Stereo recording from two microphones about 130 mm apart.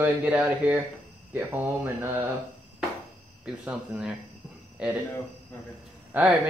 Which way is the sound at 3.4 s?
10° right (ahead or behind).